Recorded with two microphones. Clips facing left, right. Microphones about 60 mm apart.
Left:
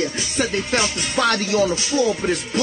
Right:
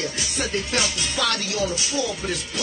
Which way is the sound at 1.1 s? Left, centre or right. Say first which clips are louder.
Left 8 dB; left.